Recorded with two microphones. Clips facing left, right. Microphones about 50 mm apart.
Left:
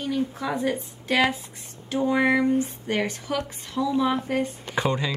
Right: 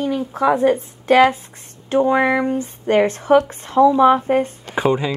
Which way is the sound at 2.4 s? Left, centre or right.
Right.